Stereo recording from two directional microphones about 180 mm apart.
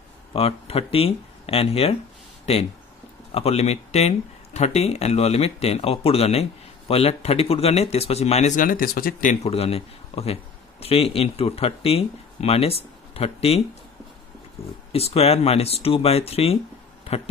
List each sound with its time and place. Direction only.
0.3 s speech: 35° left (ahead or behind)
3.3 s speech: 35° left (ahead or behind)
14.9 s speech: 35° left (ahead or behind)